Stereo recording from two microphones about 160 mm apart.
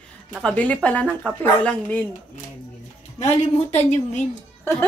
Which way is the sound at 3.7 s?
45° left (ahead or behind).